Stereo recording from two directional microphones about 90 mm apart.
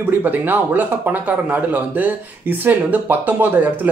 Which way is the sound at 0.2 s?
20° right (ahead or behind).